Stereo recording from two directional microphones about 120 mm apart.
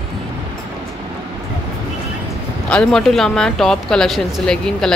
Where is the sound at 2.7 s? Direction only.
5° left (ahead or behind).